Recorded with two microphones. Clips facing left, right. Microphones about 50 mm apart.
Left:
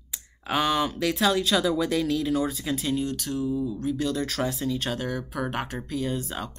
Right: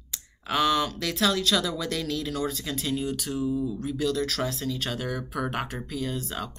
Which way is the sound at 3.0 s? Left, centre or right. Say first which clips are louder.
Even; centre.